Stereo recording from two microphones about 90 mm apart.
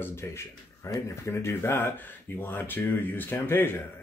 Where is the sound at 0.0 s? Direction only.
30° left (ahead or behind).